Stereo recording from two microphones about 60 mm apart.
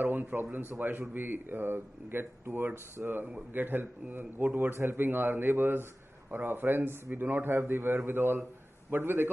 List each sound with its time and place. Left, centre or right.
0.0 s a man's voice: right
3.0 s speech: centre
3.5 s a man's voice: right